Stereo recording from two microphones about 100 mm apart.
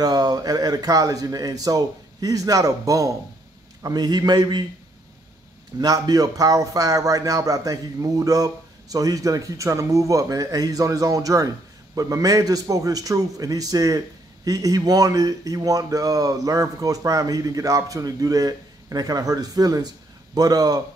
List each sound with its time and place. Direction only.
0.0 s a man's voice: 40° right (ahead or behind)
5.8 s a man's voice: 40° right (ahead or behind)